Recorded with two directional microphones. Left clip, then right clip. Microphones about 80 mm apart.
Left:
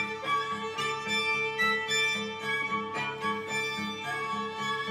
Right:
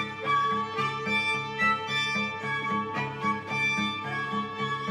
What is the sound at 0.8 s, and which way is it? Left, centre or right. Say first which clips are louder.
Harmonica: right 2 dB; left.